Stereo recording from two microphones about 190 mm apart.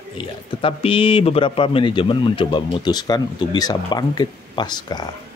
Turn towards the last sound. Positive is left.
turn(degrees=20)  # may be behind; listen again after turning